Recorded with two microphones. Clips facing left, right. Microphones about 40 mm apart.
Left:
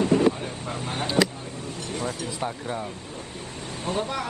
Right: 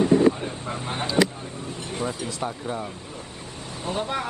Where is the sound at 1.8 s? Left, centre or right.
Centre.